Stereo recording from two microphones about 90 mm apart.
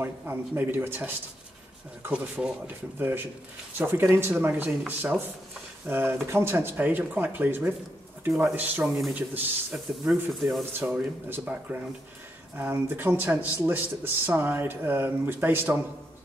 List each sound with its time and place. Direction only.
0.0 s speech: 25° right (ahead or behind)
4.6 s speech: 10° right (ahead or behind)
5.9 s speech: 25° right (ahead or behind)
10.0 s speech: centre (ahead or behind)
10.8 s speech: 25° right (ahead or behind)